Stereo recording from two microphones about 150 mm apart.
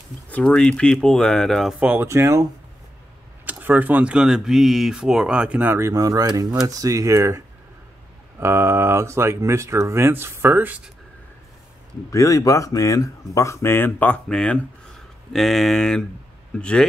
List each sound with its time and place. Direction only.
0.3 s speech: 10° left (ahead or behind)
1.8 s speech: 10° right (ahead or behind)
3.4 s speech: 10° right (ahead or behind)
12.1 s speech: 20° left (ahead or behind); by 16.8 s 5° left (ahead or behind)